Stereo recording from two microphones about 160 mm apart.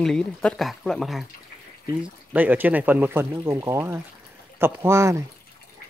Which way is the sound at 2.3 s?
10° right (ahead or behind).